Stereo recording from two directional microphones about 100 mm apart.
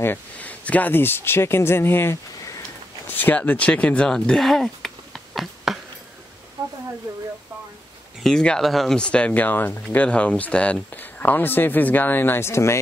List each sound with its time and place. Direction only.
0.0 s speech: 20° left (ahead or behind)
3.1 s speech: 20° left (ahead or behind); by 5.8 s centre (ahead or behind)
6.6 s a sound: 40° right (ahead or behind)
8.2 s speech: 5° left (ahead or behind); by 12.8 s 25° left (ahead or behind)